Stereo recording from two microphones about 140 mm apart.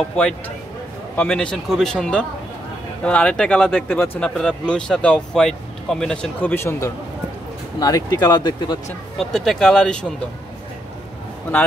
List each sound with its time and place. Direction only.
0.1 s speech: 10° left (ahead or behind)
6.5 s speech: 15° left (ahead or behind)
9.2 s speech: centre (ahead or behind)